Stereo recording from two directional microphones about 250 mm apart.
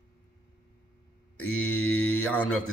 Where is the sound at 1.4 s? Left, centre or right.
Left.